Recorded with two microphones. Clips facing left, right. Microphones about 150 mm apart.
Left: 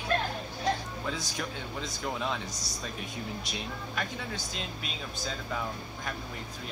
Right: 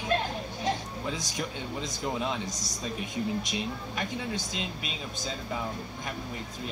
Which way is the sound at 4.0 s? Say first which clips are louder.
Right 3 dB; 20° right (ahead or behind).